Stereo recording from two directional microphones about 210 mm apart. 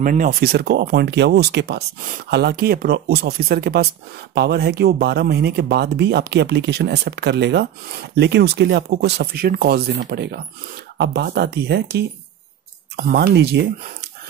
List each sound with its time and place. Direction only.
0.0 s speech: 40° right (ahead or behind)